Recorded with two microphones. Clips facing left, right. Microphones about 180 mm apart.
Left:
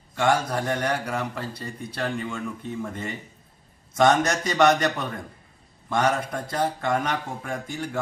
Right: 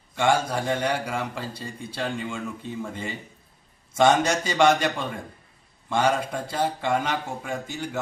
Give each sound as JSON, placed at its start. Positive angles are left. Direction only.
{"t": 0.2, "sound": "speech", "side_deg": -5}
{"t": 1.5, "sound": "speech", "side_deg": -30}
{"t": 2.0, "sound": "a man's voice", "side_deg": -5}
{"t": 5.9, "sound": "speech", "side_deg": -10}